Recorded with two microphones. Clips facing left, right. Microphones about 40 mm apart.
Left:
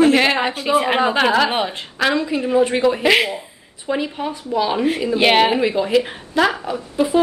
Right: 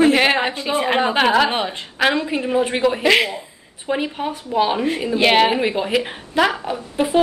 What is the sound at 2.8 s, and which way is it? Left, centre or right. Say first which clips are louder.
Speech: left 1 dB; centre.